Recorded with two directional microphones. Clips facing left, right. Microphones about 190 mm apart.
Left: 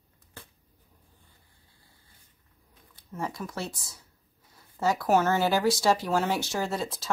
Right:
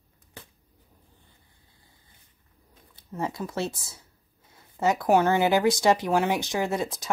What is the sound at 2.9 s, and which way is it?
Speech, 25° right (ahead or behind).